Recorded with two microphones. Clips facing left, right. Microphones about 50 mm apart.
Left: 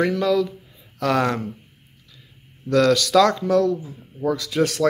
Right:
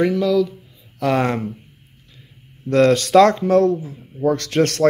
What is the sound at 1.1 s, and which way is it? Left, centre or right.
Speech, right.